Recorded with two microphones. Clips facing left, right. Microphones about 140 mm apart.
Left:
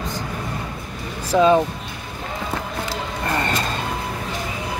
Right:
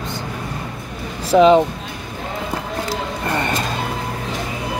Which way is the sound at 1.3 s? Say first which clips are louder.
Right 4 dB; 20° right (ahead or behind).